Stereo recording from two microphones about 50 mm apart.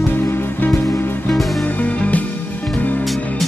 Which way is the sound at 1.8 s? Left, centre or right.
Left.